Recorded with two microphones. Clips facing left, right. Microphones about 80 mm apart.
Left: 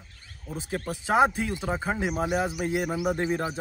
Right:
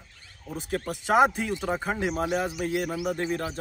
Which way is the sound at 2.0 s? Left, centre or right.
Centre.